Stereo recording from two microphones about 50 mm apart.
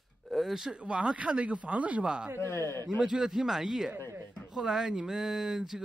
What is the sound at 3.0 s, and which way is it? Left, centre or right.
Speech, centre.